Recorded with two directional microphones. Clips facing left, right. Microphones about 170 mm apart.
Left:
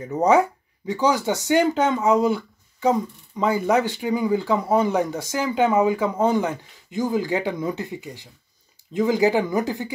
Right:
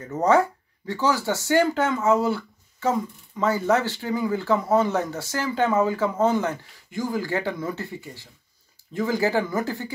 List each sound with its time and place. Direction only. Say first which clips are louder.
0.0 s speech: left 2 dB; 15° left (ahead or behind)